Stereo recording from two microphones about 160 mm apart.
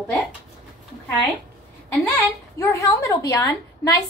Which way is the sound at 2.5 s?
20° left (ahead or behind).